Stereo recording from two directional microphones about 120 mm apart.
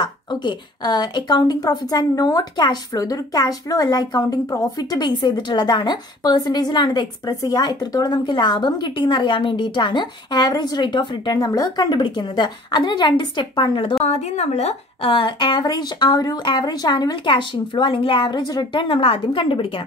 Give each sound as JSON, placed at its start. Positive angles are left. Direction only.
{"t": 0.0, "sound": "a woman's voice", "side_deg": 40}
{"t": 14.0, "sound": "a woman's voice", "side_deg": 70}